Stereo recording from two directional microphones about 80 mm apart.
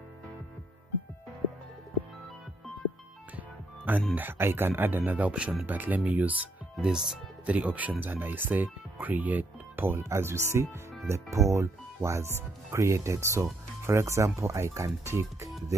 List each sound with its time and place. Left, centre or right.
3.3 s music: right
4.1 s speech: right
5.7 s speech: right